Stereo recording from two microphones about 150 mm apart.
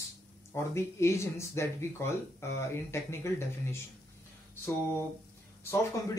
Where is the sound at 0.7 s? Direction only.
20° left (ahead or behind).